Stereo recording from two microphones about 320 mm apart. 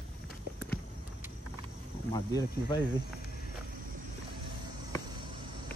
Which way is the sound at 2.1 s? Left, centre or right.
Centre.